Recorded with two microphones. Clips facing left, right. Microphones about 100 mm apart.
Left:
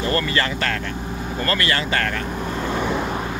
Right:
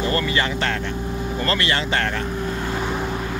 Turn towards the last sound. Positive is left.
turn(degrees=-20)  # may be behind; listen again after turning